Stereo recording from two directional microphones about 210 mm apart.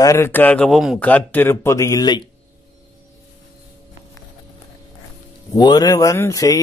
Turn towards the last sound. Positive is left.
turn(degrees=15)  # may be behind; listen again after turning